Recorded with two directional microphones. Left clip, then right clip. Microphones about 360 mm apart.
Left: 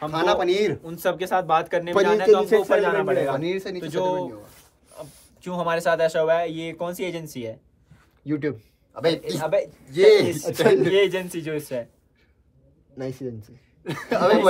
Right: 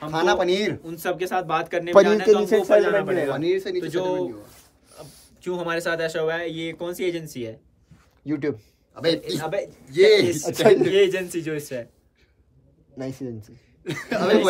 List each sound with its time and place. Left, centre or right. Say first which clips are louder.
0.1 s a man's voice: right 1 dB; centre
0.8 s speech: left 2 dB; centre
2.3 s speech: left 1 dB; centre
2.6 s a man's voice: right 2 dB; centre
5.0 s speech: left 2 dB; centre
5.4 s a man's voice: left 2 dB; centre
8.3 s a man's voice: even; centre
10.9 s speech: right 1 dB; centre
12.9 s a man's voice: left 1 dB; centre